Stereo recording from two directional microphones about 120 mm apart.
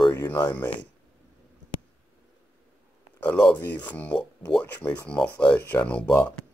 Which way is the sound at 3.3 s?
10° left (ahead or behind).